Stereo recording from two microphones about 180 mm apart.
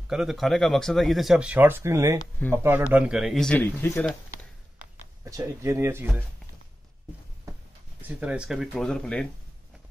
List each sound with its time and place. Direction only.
0.1 s speech: centre (ahead or behind)
5.2 s speech: 15° right (ahead or behind)
8.0 s speech: 10° right (ahead or behind)